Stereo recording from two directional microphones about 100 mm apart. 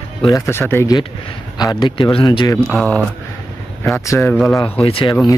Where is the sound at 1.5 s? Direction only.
45° left (ahead or behind).